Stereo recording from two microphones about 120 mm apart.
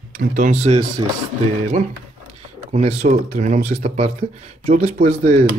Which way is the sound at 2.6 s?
65° right (ahead or behind).